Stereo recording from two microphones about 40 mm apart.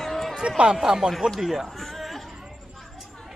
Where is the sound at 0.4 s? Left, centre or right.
Right.